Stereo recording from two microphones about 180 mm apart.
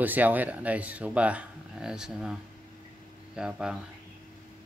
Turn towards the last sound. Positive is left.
turn(degrees=-5)  # may be behind; listen again after turning